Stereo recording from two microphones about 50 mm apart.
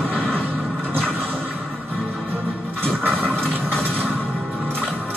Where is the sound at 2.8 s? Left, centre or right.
Left.